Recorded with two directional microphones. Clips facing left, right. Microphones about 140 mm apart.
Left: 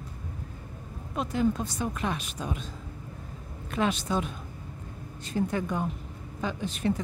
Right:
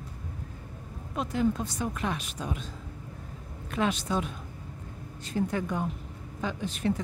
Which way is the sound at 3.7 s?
25° left (ahead or behind).